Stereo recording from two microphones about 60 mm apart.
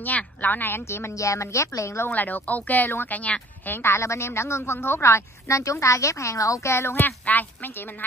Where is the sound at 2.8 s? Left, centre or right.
Left.